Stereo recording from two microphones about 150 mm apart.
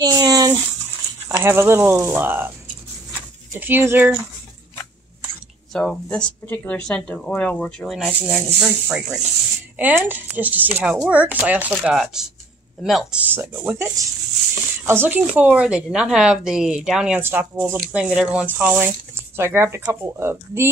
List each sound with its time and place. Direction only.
0.0 s a sound: 25° right (ahead or behind)
1.3 s speech: 15° right (ahead or behind)
3.1 s a sound: 10° right (ahead or behind)
5.7 s speech: 5° left (ahead or behind)
8.0 s speech: 10° right (ahead or behind)
13.3 s speech: 15° right (ahead or behind)